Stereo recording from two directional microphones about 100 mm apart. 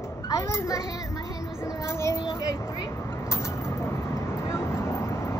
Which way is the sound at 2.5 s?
35° left (ahead or behind).